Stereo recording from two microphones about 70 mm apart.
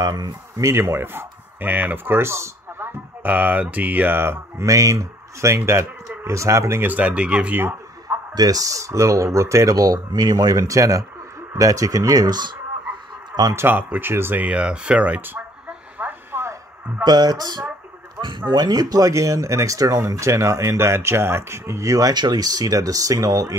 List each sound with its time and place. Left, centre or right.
0.0 s speech: right
0.6 s speech: right
3.2 s speech: right
4.6 s speech: right
6.8 s speech: right
7.5 s a sound: right
8.4 s speech: right
10.7 s speech: right
13.3 s a man's voice: right
13.6 s speech: right
14.4 s speech: centre
16.0 s radio: right
17.0 s speech: right
22.1 s speech: right